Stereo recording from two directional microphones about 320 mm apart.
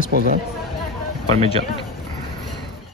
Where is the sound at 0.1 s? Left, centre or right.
Right.